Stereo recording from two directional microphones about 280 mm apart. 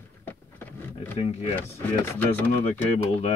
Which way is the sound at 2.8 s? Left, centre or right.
Left.